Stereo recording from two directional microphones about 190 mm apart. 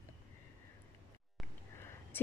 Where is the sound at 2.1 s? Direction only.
10° left (ahead or behind).